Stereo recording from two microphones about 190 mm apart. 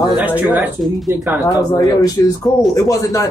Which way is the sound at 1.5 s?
20° left (ahead or behind).